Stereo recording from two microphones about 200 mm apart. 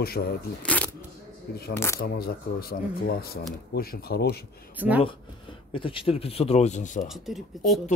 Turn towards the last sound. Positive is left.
turn(degrees=0)  # may be behind; listen again after turning